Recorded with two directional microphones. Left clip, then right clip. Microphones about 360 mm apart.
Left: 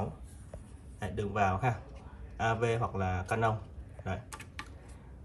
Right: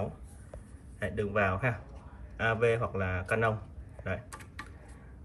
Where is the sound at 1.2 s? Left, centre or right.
Centre.